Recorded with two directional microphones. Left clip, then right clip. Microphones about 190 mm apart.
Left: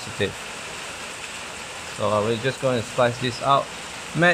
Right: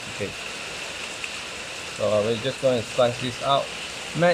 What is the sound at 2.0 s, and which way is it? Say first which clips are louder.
Speech: even; 45° left (ahead or behind).